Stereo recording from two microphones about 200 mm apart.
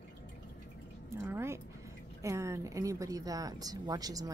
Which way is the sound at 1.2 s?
15° right (ahead or behind).